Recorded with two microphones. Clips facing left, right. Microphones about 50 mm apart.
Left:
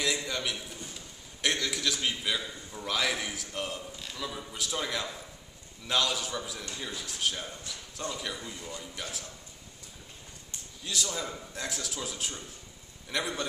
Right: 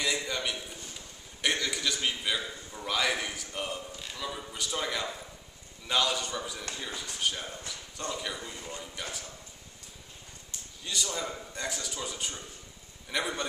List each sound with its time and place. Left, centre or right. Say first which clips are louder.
0.0 s a sound: even; centre
0.9 s a man's voice: even; centre
8.5 s speech: even; right
8.9 s a man's voice: right 1 dB; centre
10.8 s a man's voice: even; centre